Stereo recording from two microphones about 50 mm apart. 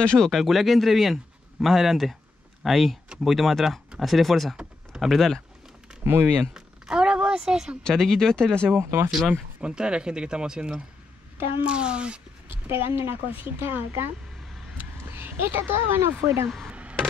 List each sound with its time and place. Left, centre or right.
0.2 s speech: centre
6.0 s speech: right
6.5 s a sound: centre
7.8 s speech: centre
8.6 s speech: right
9.6 s speech: centre
12.4 s speech: right
15.0 s a sound: right
15.9 s speech: right
16.4 s speech: centre